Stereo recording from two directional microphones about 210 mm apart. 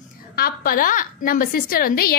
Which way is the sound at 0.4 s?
40° left (ahead or behind).